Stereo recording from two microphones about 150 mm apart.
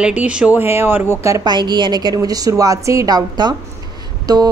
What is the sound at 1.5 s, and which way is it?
A woman's voice, 30° right (ahead or behind).